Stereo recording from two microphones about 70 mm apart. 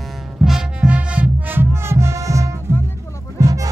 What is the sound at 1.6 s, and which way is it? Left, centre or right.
Music, right.